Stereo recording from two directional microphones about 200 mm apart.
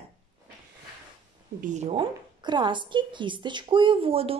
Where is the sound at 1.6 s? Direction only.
35° right (ahead or behind).